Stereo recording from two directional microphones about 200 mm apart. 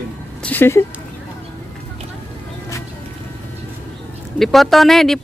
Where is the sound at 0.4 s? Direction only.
10° left (ahead or behind).